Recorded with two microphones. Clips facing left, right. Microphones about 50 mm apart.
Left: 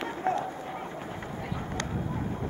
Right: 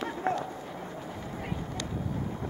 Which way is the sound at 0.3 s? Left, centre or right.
Right.